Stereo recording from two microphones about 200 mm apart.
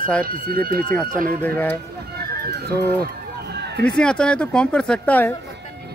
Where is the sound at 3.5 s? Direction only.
55° right (ahead or behind).